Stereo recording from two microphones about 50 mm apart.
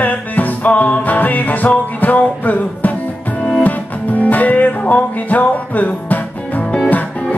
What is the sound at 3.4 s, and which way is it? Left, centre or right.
Music, centre.